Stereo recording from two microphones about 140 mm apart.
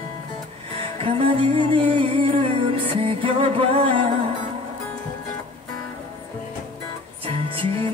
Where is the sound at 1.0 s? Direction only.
40° right (ahead or behind).